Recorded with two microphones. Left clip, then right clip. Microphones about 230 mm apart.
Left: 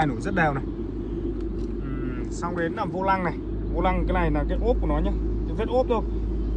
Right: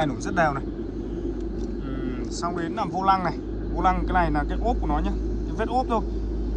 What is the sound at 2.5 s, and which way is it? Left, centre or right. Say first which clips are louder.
Speech: left 2 dB; centre.